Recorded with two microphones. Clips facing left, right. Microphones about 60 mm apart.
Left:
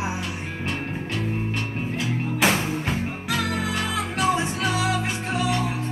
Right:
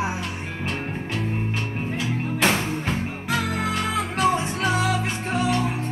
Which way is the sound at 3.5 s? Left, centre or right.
Right.